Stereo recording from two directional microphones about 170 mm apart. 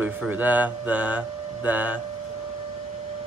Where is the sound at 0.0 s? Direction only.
10° right (ahead or behind).